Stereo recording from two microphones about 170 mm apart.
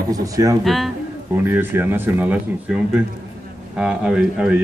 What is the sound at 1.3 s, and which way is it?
Speech, 10° right (ahead or behind).